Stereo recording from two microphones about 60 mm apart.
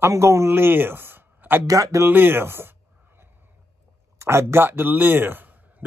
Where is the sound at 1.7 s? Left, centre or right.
Right.